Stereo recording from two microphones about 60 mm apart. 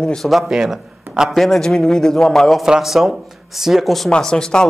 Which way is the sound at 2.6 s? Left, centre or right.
Centre.